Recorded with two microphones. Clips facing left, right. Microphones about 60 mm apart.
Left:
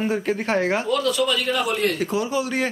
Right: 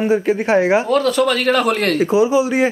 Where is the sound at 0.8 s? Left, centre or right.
Right.